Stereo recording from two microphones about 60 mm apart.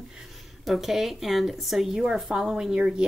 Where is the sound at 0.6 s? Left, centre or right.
Centre.